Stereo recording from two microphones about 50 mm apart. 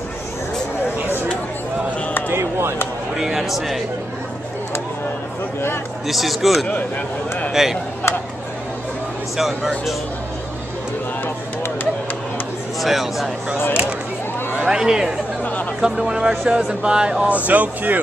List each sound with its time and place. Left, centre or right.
2.2 s a sound: right
3.2 s a man's voice: centre
6.0 s a man's voice: centre
9.4 s a man's voice: centre
12.8 s a man's voice: centre
14.5 s speech: centre
17.3 s speech: right